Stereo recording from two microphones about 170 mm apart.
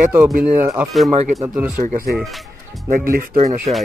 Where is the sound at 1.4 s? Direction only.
5° right (ahead or behind).